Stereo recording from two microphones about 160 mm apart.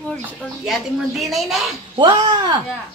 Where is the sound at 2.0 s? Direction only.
30° right (ahead or behind).